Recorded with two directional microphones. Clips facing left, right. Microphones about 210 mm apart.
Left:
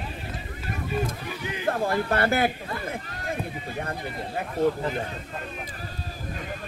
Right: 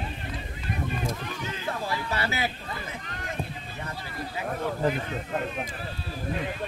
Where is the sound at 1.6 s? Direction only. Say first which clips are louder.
Left 8 dB; 55° left (ahead or behind).